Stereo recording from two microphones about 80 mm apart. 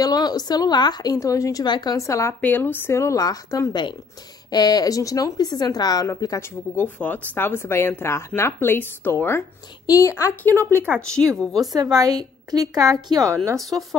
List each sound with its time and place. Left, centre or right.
0.0 s a woman's voice: left
1.1 s speech: left
1.6 s a woman's voice: left
2.0 s a woman's voice: left
2.4 s a woman's voice: left
4.5 s speech: left
6.0 s a woman's voice: left
6.7 s a woman's voice: left
9.8 s a woman's voice: left
11.1 s speech: centre
11.7 s a woman's voice: right
13.6 s speech: centre